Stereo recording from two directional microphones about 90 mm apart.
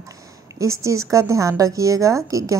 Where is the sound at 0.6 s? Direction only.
35° right (ahead or behind).